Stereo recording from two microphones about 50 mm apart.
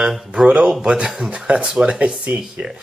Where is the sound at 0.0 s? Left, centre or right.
Centre.